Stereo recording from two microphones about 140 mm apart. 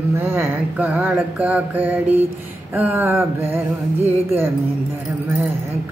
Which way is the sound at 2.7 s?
15° right (ahead or behind).